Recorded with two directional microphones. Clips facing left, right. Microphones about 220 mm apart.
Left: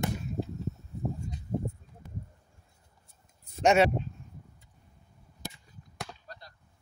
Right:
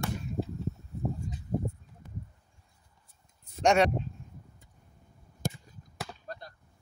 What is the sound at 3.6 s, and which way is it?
Speech, 5° left (ahead or behind).